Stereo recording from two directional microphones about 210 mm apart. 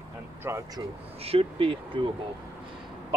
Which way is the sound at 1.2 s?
25° right (ahead or behind).